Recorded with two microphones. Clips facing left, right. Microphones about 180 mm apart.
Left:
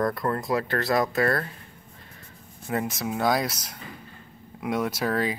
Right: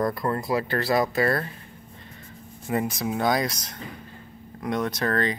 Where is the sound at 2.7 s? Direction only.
Centre (ahead or behind).